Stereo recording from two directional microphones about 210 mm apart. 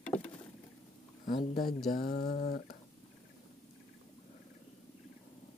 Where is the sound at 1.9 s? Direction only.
45° left (ahead or behind).